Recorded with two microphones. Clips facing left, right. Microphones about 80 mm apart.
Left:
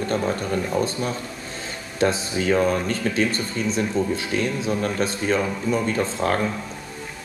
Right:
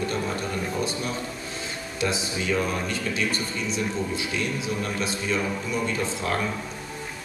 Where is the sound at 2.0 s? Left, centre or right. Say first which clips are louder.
Left 6 dB; left.